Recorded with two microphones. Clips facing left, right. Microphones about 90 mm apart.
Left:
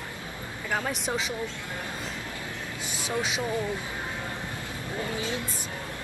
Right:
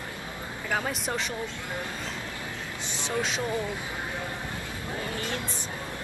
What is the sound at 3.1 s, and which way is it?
Speech, 5° left (ahead or behind).